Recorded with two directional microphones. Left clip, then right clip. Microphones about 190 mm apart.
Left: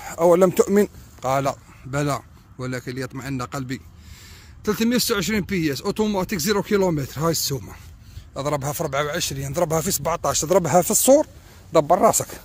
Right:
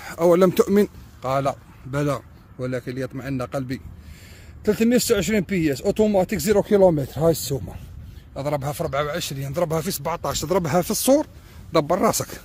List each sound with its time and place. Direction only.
0.0 s speech: 20° right (ahead or behind)
1.2 s speech: 10° left (ahead or behind)
8.4 s speech: 15° left (ahead or behind); by 11.2 s 5° right (ahead or behind)
11.7 s speech: 15° right (ahead or behind)